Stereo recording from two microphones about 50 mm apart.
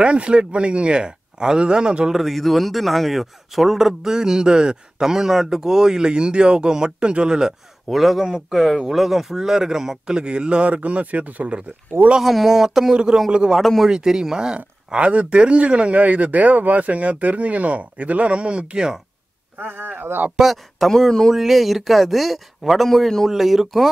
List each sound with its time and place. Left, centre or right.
0.0 s speech: right
2.1 s a man's voice: centre; by 11.6 s right
12.2 s speech: centre
12.9 s a man's voice: centre
13.6 s speech: centre
13.8 s a man's voice: centre
14.9 s speech: right
19.6 s speech: right
20.3 s speech: centre
20.9 s speech: centre
21.3 s speech: centre